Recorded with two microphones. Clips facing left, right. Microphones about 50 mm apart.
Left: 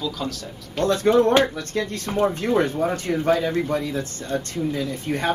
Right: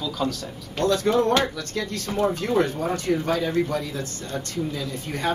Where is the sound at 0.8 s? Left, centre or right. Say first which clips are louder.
Left 3 dB; left.